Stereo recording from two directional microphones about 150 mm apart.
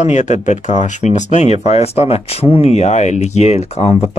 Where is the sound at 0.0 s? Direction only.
50° left (ahead or behind).